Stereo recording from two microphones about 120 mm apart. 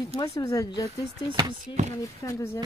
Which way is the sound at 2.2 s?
20° left (ahead or behind).